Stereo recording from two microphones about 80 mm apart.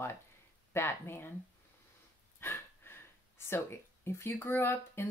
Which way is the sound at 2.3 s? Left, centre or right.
Left.